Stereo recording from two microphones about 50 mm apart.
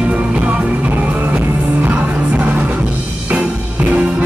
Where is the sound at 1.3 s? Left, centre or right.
Right.